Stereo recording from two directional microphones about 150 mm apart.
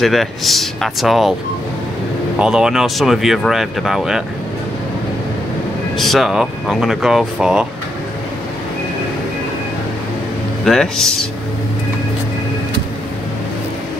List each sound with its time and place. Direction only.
0.0 s speech: centre (ahead or behind)
2.3 s speech: 5° right (ahead or behind)
5.9 s speech: centre (ahead or behind)
10.6 s speech: 5° left (ahead or behind)